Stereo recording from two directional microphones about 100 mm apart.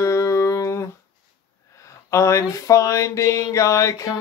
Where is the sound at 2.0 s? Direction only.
30° left (ahead or behind).